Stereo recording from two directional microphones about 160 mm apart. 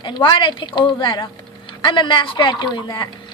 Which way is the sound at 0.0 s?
30° left (ahead or behind).